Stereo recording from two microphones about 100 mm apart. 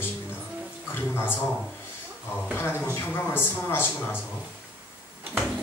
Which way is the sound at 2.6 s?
25° left (ahead or behind).